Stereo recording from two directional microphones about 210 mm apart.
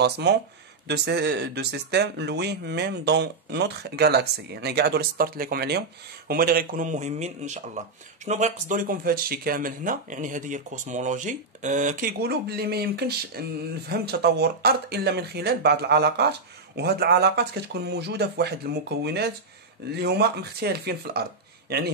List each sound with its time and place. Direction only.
0.0 s speech: 50° right (ahead or behind)